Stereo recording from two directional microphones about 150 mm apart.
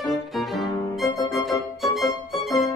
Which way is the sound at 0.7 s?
20° left (ahead or behind).